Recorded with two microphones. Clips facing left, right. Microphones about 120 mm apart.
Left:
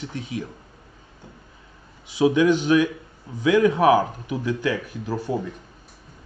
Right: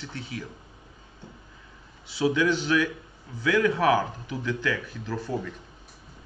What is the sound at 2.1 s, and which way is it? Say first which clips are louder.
A man's voice: left 6 dB; 15° left (ahead or behind).